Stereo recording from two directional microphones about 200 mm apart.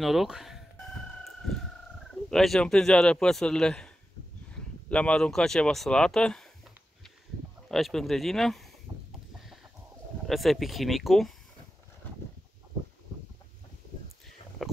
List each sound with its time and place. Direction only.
0.0 s a man's voice: centre (ahead or behind)
2.3 s a man's voice: centre (ahead or behind)
7.6 s a man's voice: centre (ahead or behind)
8.9 s a sound: 15° right (ahead or behind)
10.2 s a man's voice: centre (ahead or behind)
14.6 s a sound: centre (ahead or behind)